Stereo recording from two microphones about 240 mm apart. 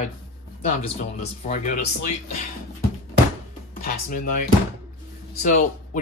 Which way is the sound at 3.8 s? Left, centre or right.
Left.